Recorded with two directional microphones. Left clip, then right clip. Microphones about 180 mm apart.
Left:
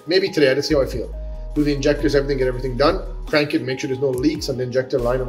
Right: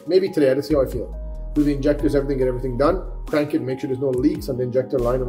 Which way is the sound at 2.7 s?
65° right (ahead or behind).